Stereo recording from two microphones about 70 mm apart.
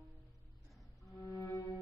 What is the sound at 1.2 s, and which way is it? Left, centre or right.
Music, left.